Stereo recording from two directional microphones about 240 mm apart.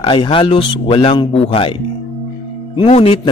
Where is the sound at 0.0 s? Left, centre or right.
Left.